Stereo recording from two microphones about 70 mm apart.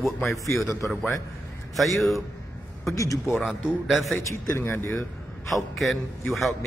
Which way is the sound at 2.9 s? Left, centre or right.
Left.